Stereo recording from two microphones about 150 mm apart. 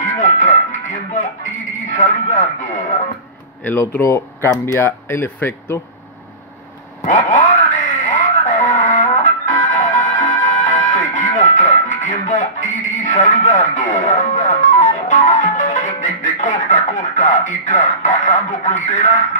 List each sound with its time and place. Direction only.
0.0 s music: 55° left (ahead or behind)
3.6 s speech: 15° left (ahead or behind)
7.0 s a sound: 60° left (ahead or behind)